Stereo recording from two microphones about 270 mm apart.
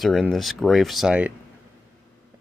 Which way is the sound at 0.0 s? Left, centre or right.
Centre.